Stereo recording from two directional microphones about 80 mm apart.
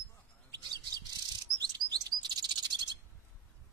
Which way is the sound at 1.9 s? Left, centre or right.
Right.